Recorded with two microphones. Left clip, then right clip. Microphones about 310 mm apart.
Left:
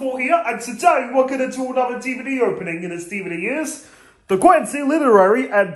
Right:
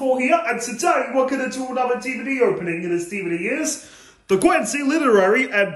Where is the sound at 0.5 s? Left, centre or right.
Centre.